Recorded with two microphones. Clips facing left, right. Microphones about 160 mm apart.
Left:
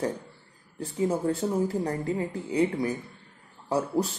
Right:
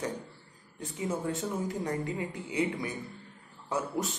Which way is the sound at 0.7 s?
35° left (ahead or behind).